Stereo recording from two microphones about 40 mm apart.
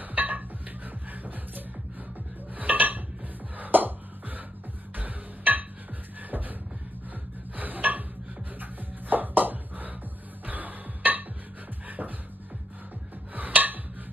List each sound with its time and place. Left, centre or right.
0.0 s music: right
2.5 s dishes: right
3.5 s music: right
7.5 s dishes: right
9.1 s a sound: right
10.4 s music: right
12.0 s music: right
13.3 s a sound: right